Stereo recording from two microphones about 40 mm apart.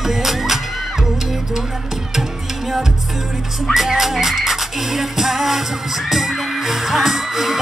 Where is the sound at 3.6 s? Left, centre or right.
Centre.